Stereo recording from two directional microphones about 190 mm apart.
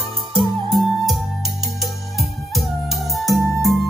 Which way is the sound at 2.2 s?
Centre (ahead or behind).